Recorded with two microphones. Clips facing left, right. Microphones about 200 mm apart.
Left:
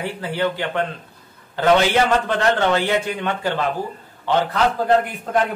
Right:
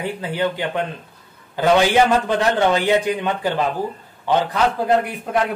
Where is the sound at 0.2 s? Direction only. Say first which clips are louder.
Left 1 dB; 15° right (ahead or behind).